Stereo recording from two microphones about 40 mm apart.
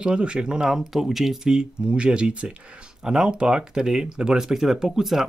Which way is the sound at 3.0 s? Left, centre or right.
Centre.